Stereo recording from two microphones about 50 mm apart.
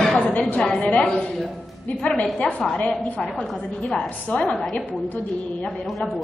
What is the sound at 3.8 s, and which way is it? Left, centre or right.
Speech, left.